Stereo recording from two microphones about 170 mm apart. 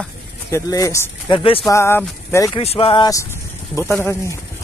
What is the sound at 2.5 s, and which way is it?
Speech, 35° left (ahead or behind).